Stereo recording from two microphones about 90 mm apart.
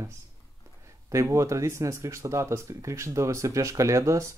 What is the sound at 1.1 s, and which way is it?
Speech, 35° right (ahead or behind).